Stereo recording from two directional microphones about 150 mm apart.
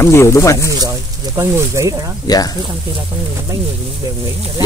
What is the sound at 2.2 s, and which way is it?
Speech, 25° left (ahead or behind).